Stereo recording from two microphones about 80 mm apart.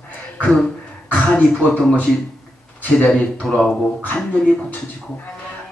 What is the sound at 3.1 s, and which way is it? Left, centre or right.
Speech, centre.